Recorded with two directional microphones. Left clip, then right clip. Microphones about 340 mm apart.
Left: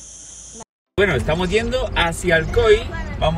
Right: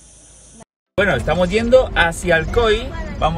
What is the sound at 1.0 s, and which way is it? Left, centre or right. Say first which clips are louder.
Speech: right 2 dB; centre.